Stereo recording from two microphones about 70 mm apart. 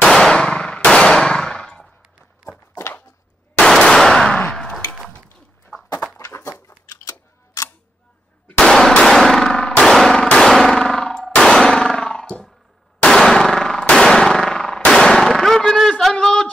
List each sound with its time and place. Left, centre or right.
0.0 s clang: centre
3.5 s gunshot: centre
4.5 s a sound: centre
6.1 s a sound: left
6.9 s camera: left
8.5 s clang: centre